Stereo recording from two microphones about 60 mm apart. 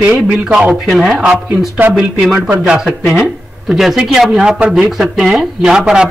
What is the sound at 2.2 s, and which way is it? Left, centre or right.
A man's voice, centre.